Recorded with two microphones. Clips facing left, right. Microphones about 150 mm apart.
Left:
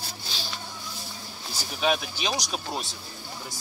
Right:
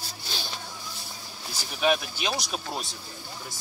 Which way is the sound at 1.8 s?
Centre (ahead or behind).